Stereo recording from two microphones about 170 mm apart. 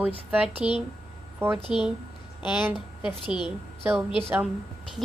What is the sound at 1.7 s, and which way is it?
Speech, 5° right (ahead or behind).